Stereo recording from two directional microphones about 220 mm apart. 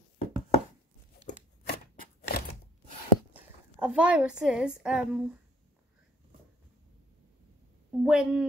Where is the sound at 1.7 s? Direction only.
45° left (ahead or behind).